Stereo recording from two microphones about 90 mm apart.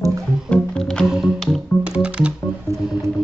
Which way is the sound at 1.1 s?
5° right (ahead or behind).